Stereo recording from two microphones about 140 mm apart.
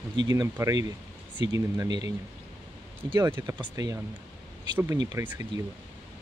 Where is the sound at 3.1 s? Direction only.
20° right (ahead or behind).